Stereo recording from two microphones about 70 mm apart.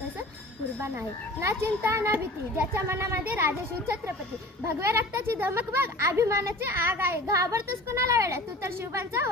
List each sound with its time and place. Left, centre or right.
1.4 s a woman's voice: right
2.1 s a child's voice: right
2.7 s speech: right
4.7 s speech: right
6.7 s a woman's voice: right